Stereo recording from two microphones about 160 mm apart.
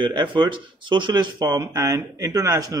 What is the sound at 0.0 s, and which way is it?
Speech, 30° right (ahead or behind).